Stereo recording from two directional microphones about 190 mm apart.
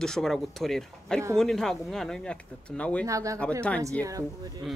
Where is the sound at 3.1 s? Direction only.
15° right (ahead or behind).